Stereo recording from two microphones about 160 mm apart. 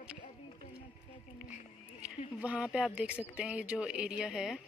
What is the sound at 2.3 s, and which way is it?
Speech, 5° right (ahead or behind).